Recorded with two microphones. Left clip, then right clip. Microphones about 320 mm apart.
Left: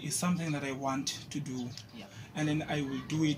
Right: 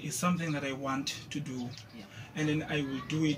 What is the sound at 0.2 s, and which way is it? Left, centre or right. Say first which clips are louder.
Speech: right 4 dB; centre.